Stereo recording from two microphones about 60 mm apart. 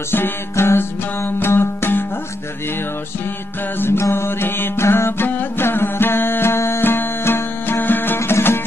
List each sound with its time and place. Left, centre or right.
0.1 s music: left
3.8 s mantra: left
8.2 s music: left